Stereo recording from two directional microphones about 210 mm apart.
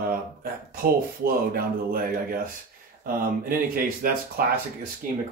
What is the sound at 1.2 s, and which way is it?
Speech, 45° right (ahead or behind).